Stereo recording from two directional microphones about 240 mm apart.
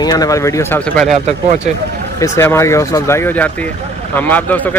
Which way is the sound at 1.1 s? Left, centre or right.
Right.